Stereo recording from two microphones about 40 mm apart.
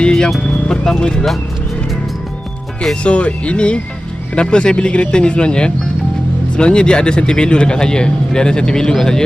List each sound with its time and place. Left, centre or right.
0.0 s speech: left
3.0 s a man's voice: left; by 9.2 s centre